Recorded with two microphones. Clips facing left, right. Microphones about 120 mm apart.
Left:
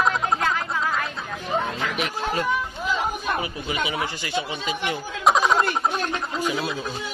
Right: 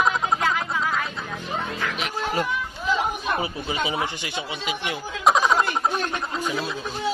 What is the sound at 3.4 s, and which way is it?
Speech, 30° right (ahead or behind).